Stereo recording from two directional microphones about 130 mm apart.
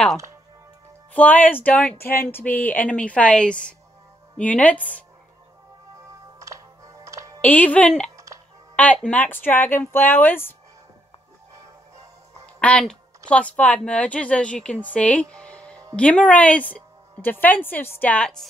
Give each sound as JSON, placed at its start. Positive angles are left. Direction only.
{"t": 1.1, "sound": "speech", "side_deg": 10}
{"t": 6.4, "sound": "music", "side_deg": -25}
{"t": 7.4, "sound": "speech", "side_deg": 10}
{"t": 12.5, "sound": "speech", "side_deg": 5}